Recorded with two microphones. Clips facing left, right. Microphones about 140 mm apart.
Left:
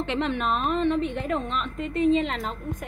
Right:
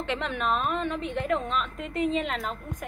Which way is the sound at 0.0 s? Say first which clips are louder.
Left 3 dB; centre (ahead or behind).